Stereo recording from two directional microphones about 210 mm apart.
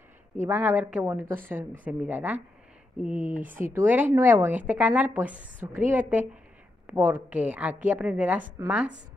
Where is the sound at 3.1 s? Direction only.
35° right (ahead or behind).